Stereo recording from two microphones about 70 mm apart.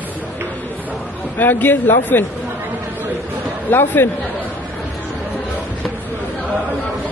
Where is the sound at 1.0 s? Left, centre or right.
Left.